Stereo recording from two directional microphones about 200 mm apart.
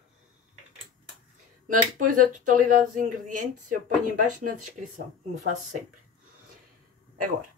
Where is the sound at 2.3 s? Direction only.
40° right (ahead or behind).